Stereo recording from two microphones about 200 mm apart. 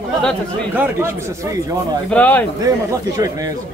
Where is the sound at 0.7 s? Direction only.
10° right (ahead or behind).